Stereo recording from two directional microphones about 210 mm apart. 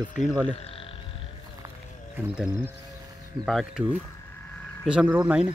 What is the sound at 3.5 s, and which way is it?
Speech, centre (ahead or behind).